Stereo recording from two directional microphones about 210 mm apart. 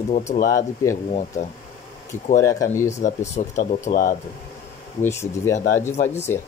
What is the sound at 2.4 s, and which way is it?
Speech, 15° left (ahead or behind).